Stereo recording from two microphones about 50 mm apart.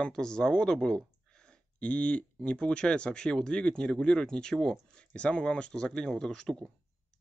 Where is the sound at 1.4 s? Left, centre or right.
Left.